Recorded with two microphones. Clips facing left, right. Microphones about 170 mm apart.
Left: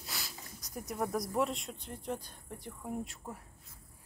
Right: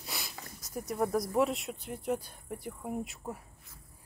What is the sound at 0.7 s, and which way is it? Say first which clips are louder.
Speech: right 4 dB; centre (ahead or behind).